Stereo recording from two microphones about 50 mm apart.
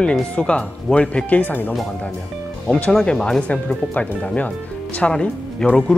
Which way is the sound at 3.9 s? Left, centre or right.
Left.